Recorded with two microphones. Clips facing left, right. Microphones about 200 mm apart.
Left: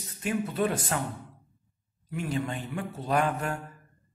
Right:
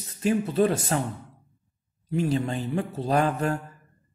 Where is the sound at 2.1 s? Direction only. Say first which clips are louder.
Right 6 dB; 35° right (ahead or behind).